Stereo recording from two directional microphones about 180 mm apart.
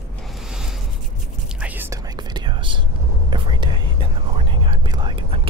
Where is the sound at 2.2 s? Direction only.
25° right (ahead or behind).